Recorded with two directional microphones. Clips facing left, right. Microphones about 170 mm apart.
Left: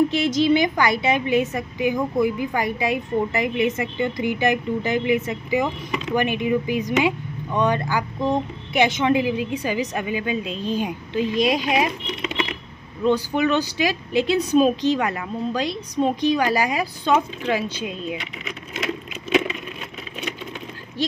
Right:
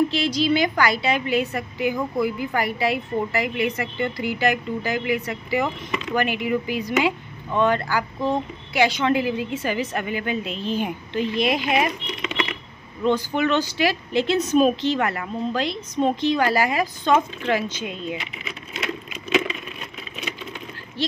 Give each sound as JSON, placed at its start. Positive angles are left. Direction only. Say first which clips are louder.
{"t": 0.1, "sound": "a woman's voice", "louder": "left 3 dB", "side_deg": 20}
{"t": 13.0, "sound": "speech", "louder": "left 1 dB", "side_deg": 10}